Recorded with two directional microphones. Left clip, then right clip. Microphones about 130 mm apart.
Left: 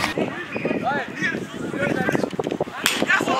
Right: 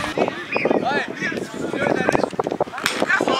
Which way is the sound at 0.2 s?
35° right (ahead or behind).